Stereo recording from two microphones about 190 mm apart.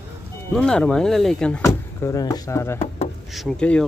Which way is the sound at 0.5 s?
5° left (ahead or behind).